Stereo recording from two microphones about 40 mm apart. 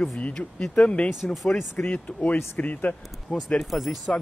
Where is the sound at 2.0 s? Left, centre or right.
Left.